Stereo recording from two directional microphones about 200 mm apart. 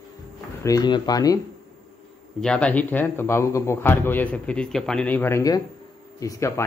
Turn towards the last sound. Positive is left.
turn(degrees=15)  # may be behind; listen again after turning